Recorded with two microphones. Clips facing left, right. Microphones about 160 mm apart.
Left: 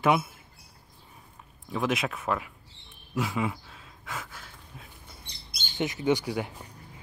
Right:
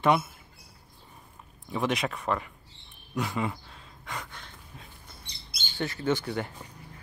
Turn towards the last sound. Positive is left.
turn(degrees=10)  # may be behind; listen again after turning